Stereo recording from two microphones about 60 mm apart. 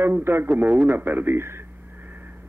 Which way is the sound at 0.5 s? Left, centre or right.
Right.